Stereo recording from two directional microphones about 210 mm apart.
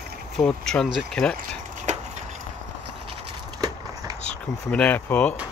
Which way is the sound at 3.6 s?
15° right (ahead or behind).